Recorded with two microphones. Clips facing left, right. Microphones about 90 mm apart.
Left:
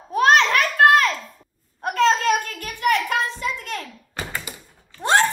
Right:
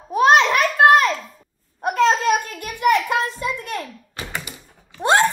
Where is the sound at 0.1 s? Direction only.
10° right (ahead or behind).